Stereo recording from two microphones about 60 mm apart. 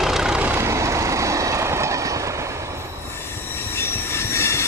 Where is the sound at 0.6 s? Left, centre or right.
Right.